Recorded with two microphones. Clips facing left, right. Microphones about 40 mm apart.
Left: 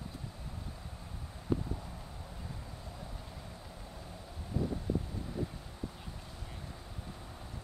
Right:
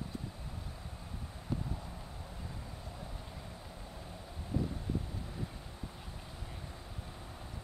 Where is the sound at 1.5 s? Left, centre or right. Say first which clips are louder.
Left 5 dB; centre.